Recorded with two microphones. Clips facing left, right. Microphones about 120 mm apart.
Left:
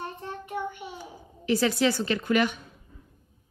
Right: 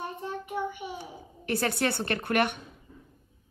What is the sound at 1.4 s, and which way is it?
A woman's voice, 55° right (ahead or behind).